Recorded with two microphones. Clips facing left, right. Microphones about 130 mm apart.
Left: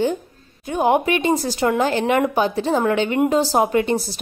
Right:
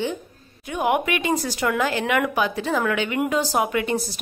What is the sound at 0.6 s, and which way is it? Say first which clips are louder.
A woman's voice: left 4 dB; 30° left (ahead or behind).